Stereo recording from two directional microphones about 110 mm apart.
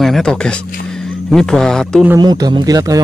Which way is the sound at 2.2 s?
40° right (ahead or behind).